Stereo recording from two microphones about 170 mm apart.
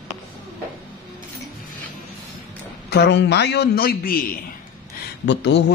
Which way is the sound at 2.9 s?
85° left.